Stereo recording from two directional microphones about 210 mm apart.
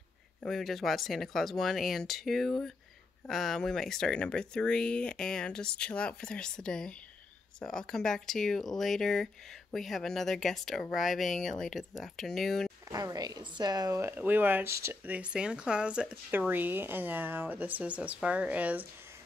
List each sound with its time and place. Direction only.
0.4 s speech: centre (ahead or behind)
12.8 s a woman's voice: 15° right (ahead or behind)